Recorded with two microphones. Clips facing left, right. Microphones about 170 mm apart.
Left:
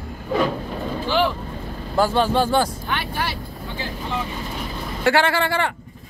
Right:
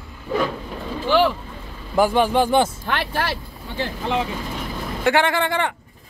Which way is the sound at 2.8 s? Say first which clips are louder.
Right 2 dB; 90° right.